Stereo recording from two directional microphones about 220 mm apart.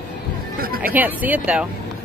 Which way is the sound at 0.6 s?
40° right (ahead or behind).